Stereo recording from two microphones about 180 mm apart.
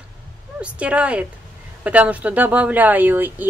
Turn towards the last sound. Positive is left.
turn(degrees=-10)  # may be behind; listen again after turning